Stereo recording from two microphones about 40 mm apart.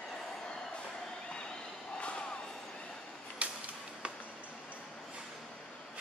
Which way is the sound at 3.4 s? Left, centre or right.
Right.